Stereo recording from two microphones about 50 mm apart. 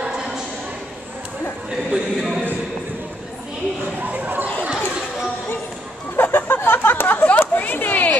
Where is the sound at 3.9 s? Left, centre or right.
Right.